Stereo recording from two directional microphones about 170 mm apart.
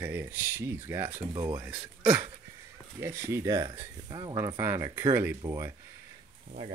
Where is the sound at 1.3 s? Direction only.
25° right (ahead or behind).